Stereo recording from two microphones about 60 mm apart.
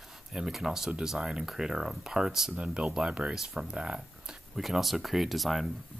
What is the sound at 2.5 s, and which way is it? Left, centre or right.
Speech, centre.